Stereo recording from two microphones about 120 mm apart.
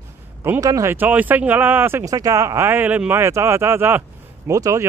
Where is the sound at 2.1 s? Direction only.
30° right (ahead or behind).